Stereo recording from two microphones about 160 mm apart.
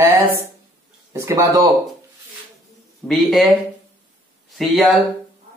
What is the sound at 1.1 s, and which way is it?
Speech, 15° right (ahead or behind).